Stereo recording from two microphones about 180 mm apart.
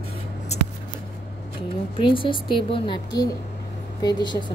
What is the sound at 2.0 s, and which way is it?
A woman's voice, 25° left (ahead or behind).